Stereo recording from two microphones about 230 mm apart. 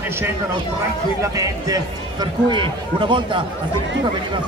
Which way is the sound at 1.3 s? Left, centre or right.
Centre.